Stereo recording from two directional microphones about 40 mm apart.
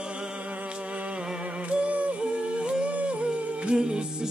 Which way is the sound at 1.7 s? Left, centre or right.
Right.